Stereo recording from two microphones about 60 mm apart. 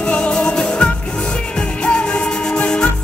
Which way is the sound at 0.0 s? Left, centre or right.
Centre.